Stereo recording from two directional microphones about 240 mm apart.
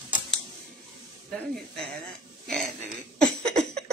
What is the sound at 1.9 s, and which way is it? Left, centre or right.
Speech, centre.